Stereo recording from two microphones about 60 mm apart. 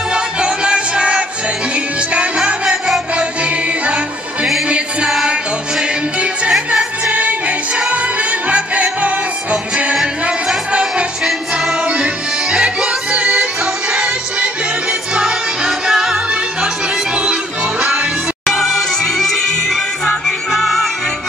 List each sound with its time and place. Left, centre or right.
0.1 s music: centre
19.1 s music: centre